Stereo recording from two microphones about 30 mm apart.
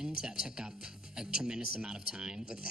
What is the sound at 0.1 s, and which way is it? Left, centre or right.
Speech, right.